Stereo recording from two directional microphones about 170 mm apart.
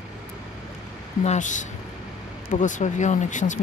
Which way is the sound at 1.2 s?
45° left (ahead or behind).